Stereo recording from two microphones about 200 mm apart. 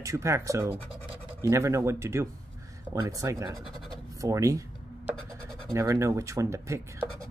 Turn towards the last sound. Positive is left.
turn(degrees=-15)  # may be behind; listen again after turning